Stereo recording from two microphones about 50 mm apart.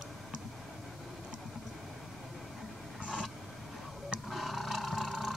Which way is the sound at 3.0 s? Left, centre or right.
Right.